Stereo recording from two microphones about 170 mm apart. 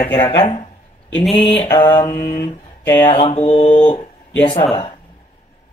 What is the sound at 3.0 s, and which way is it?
Mantra, 35° left (ahead or behind).